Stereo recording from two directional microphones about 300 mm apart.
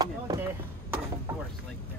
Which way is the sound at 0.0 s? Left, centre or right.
Centre.